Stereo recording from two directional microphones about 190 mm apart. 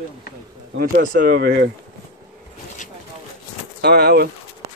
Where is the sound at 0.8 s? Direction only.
50° right (ahead or behind).